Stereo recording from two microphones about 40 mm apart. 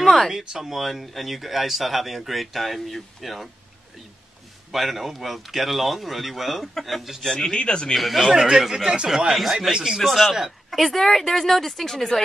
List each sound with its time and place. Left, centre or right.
0.0 s a sound: centre
0.3 s speech: centre
4.7 s speech: centre
7.5 s speech: left
7.9 s speech: centre